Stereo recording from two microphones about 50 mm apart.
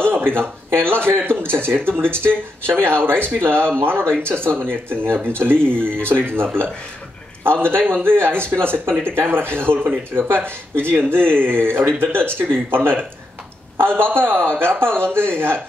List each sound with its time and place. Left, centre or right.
0.0 s speech: right
14.1 s speech: right